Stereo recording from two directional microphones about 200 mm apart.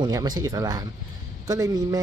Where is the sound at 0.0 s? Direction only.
20° right (ahead or behind).